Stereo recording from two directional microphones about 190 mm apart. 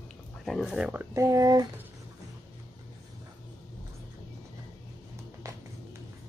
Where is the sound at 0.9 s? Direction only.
15° right (ahead or behind).